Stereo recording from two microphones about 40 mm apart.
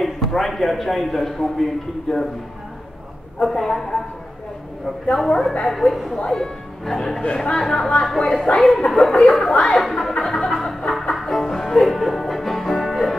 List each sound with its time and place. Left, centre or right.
0.0 s a man's voice: centre
3.6 s a man's voice: centre
5.1 s a man's voice: centre
7.2 s speech: left
7.5 s speech: centre
8.5 s music: centre